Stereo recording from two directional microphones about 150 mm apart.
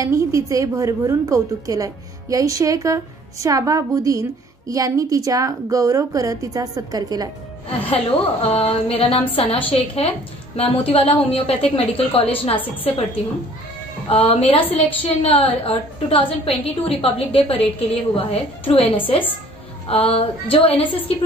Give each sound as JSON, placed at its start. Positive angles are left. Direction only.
{"t": 0.0, "sound": "a woman's voice", "side_deg": -20}
{"t": 7.9, "sound": "a woman's voice", "side_deg": 40}
{"t": 14.0, "sound": "a woman's voice", "side_deg": 40}